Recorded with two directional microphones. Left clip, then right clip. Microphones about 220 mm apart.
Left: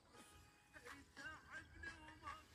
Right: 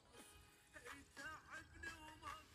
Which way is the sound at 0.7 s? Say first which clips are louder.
Right 1 dB; 55° right (ahead or behind).